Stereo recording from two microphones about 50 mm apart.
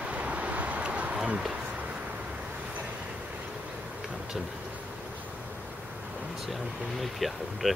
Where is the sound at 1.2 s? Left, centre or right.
Centre.